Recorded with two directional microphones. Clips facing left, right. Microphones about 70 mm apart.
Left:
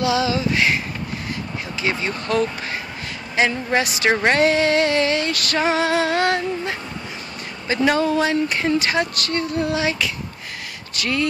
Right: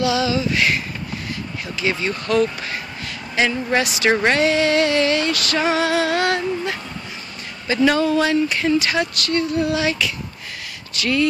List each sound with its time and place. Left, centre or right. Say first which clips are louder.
0.0 s female singing: even; left
1.8 s speech: right 2 dB; left
3.3 s female singing: even; left
7.6 s speech: right 1 dB; left
8.5 s female singing: right 1 dB; left